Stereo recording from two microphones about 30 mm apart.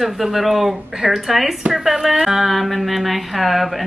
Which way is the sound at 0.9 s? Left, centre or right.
Centre.